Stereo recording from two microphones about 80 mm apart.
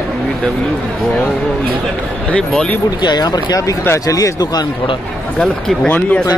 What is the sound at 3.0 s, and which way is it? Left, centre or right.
Speech, left.